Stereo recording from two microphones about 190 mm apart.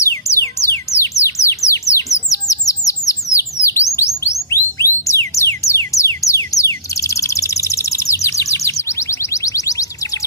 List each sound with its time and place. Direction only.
0.0 s music: 15° left (ahead or behind)
2.2 s bird: 15° left (ahead or behind)
3.6 s chirp tone: 15° left (ahead or behind)
9.3 s music: 15° left (ahead or behind)